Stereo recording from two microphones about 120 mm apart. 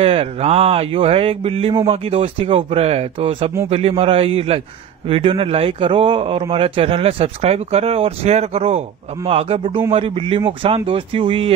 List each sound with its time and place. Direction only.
0.0 s speech: 55° right (ahead or behind)